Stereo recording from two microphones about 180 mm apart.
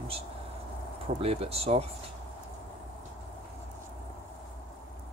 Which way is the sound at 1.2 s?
35° right (ahead or behind).